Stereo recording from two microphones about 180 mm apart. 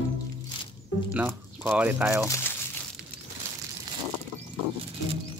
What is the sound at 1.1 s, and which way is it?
Speech, 10° right (ahead or behind).